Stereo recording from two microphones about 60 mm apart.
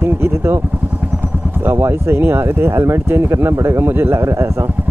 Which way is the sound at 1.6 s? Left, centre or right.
Right.